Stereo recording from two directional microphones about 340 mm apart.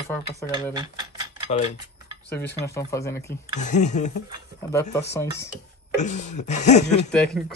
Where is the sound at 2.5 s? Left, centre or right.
Centre.